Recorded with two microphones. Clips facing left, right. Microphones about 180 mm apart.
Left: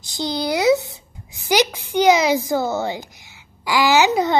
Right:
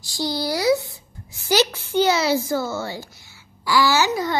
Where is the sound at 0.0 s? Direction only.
20° left (ahead or behind).